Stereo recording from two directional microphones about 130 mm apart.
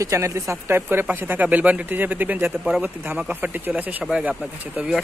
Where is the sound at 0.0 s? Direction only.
25° right (ahead or behind).